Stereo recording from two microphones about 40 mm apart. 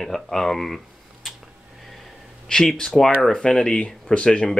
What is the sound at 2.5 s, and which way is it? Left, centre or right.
Speech, centre.